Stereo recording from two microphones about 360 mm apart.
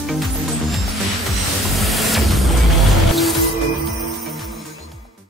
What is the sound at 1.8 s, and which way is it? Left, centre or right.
Music, centre.